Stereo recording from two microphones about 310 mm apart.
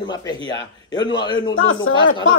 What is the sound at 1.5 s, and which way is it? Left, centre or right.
Speech, left.